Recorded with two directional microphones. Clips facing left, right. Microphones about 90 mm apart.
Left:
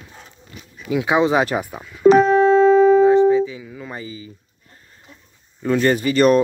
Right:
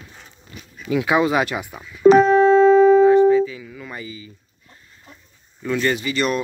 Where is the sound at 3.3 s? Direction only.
25° left (ahead or behind).